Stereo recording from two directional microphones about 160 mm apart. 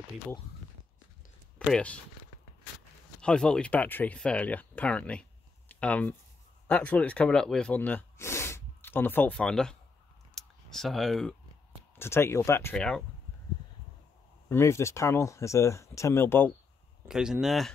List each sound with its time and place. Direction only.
1.7 s speech: 10° left (ahead or behind)
3.2 s speech: 5° left (ahead or behind)
10.3 s a sound: centre (ahead or behind)
12.0 s speech: 15° left (ahead or behind)
12.7 s speech: 5° left (ahead or behind)
14.5 s speech: 15° left (ahead or behind)
17.1 s speech: 5° right (ahead or behind)